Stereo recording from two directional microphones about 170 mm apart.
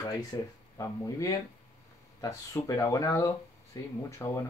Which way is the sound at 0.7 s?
20° left (ahead or behind).